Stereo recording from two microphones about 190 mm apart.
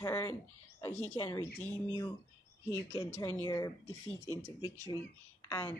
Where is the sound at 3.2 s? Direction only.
15° left (ahead or behind).